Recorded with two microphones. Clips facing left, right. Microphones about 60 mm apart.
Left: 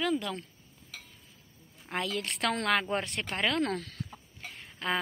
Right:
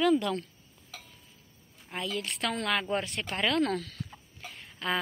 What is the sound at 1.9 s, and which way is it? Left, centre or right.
A woman's voice, left.